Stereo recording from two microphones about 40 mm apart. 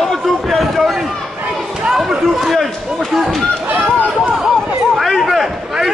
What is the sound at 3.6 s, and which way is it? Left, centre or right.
Run, right.